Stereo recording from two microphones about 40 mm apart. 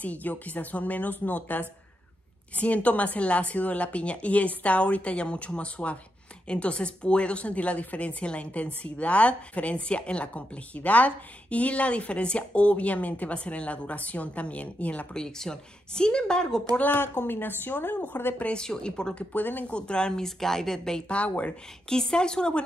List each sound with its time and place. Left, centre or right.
0.0 s speech: left
15.1 s speech: centre
17.2 s a woman's voice: left
18.5 s a woman's voice: centre
19.1 s speech: left
19.7 s a woman's voice: left
20.2 s speech: centre
21.1 s speech: left
21.8 s a woman's voice: centre